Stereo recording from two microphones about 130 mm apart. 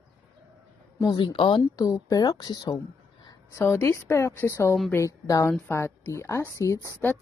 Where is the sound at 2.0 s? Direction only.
30° left (ahead or behind).